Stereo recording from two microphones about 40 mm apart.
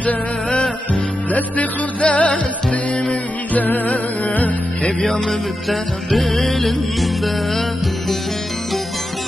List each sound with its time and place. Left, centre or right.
0.0 s music: left
5.7 s music: centre